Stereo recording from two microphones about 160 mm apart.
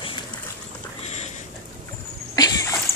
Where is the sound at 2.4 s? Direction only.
25° left (ahead or behind).